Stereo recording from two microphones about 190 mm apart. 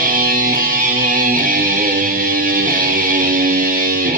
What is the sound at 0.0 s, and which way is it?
Music, 50° right (ahead or behind).